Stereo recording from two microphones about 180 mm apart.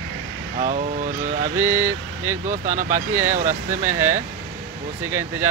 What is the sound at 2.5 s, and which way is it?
Speech, 45° right (ahead or behind).